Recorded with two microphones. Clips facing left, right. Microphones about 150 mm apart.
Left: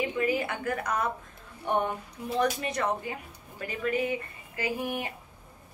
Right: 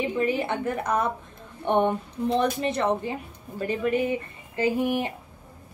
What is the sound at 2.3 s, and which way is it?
Speech, 25° right (ahead or behind).